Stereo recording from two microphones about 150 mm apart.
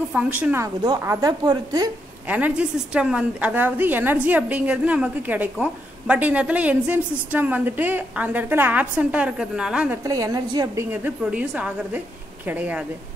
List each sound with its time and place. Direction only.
0.1 s a woman's voice: 10° right (ahead or behind); by 1.9 s 25° right (ahead or behind)
2.2 s a woman's voice: 10° right (ahead or behind)
10.0 s a woman's voice: 25° right (ahead or behind)
10.9 s a woman's voice: 15° right (ahead or behind)